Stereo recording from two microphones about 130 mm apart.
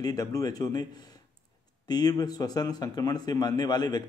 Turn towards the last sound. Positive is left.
turn(degrees=30)  # may be behind; listen again after turning